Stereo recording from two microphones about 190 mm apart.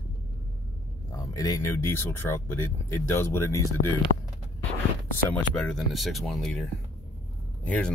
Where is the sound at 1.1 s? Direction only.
20° left (ahead or behind).